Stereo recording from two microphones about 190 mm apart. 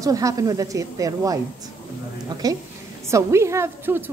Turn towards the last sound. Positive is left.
turn(degrees=-10)  # may be behind; listen again after turning